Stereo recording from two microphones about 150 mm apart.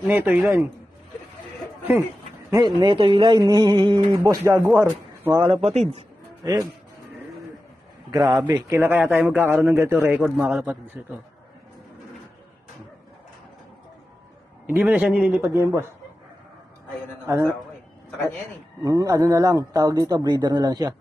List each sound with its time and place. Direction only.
0.0 s a man's voice: 10° right (ahead or behind)
2.5 s a man's voice: 30° right (ahead or behind)
4.2 s a man's voice: 20° right (ahead or behind)
5.3 s a man's voice: 30° right (ahead or behind)
5.6 s a man's voice: 45° right (ahead or behind)
6.4 s a man's voice: 25° right (ahead or behind)
8.1 s a man's voice: 25° right (ahead or behind); by 11.1 s 10° right (ahead or behind)
14.7 s a man's voice: 10° right (ahead or behind)
18.9 s a man's voice: 20° right (ahead or behind)